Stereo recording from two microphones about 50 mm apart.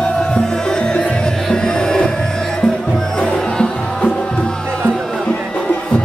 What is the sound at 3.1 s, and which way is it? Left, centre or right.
Music, centre.